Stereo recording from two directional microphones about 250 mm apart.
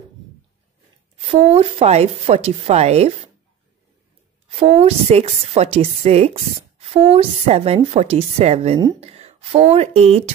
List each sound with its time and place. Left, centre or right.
1.1 s a woman's voice: right
4.5 s a woman's voice: right